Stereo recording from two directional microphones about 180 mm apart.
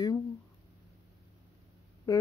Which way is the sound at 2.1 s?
20° left (ahead or behind).